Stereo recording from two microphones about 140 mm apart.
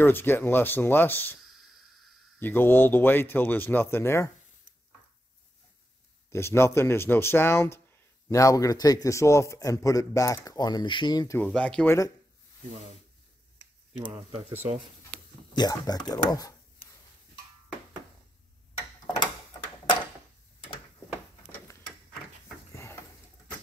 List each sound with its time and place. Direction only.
0.0 s speech: 15° left (ahead or behind)
6.3 s a man's voice: 20° left (ahead or behind)
11.3 s speech: 10° left (ahead or behind)
13.9 s speech: 35° right (ahead or behind)
15.5 s a man's voice: 30° left (ahead or behind)